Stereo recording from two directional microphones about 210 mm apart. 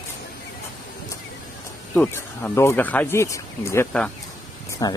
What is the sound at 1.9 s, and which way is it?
Speech, 10° left (ahead or behind).